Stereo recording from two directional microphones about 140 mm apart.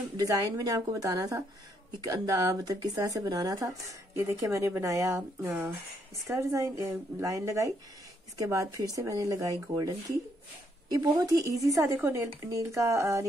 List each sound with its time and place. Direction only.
0.2 s speech: 25° right (ahead or behind)